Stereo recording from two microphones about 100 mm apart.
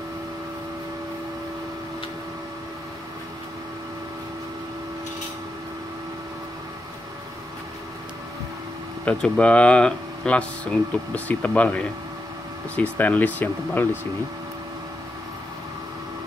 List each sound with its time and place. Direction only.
9.0 s speech: 10° left (ahead or behind)
12.9 s speech: 15° left (ahead or behind)